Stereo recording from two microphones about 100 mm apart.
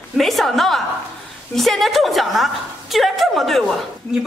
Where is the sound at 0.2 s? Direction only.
Centre (ahead or behind).